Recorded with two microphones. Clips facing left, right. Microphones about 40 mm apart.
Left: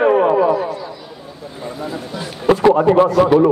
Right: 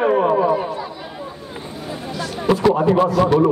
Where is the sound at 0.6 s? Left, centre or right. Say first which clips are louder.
Left 2 dB; right.